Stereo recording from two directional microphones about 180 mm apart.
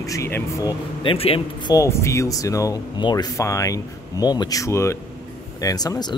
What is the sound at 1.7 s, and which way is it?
Speech, 15° left (ahead or behind).